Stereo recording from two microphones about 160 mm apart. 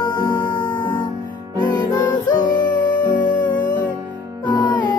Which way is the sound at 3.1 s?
55° left (ahead or behind).